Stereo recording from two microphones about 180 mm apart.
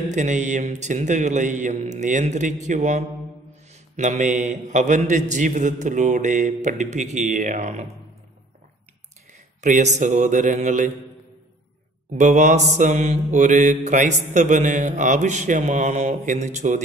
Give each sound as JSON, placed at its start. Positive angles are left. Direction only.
{"t": 0.1, "sound": "mantra", "side_deg": -40}
{"t": 9.6, "sound": "mantra", "side_deg": -40}
{"t": 12.1, "sound": "mantra", "side_deg": -40}